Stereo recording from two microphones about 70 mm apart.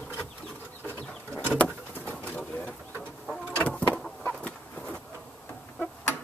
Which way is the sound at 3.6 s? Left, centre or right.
Left.